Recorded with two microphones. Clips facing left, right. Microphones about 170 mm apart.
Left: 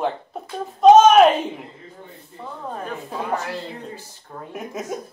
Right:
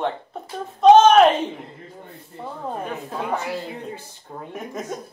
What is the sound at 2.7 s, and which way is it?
Speech, 15° right (ahead or behind).